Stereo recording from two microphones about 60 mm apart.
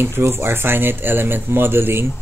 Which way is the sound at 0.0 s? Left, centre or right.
Right.